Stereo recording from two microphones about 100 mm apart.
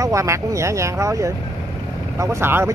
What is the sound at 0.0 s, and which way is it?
Speech, 30° right (ahead or behind).